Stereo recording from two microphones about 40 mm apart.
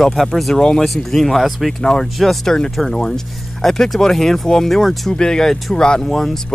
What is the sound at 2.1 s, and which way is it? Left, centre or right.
Speech, centre.